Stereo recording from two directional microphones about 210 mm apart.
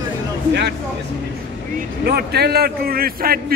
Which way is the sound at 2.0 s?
50° right (ahead or behind).